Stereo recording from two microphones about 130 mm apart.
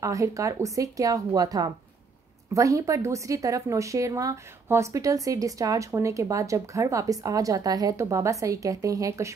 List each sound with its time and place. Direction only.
0.0 s a woman's voice: 25° right (ahead or behind)